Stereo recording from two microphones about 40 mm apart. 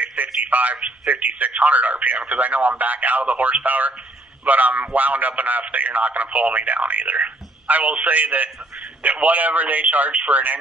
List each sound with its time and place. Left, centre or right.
0.0 s a man's voice: right